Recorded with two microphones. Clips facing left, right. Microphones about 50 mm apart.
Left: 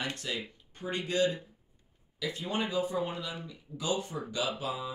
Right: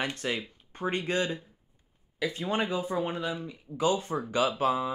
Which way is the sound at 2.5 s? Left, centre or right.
Right.